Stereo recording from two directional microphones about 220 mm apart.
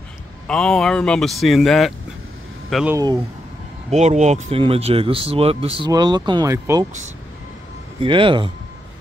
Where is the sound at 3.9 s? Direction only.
30° right (ahead or behind); by 6.9 s 15° right (ahead or behind).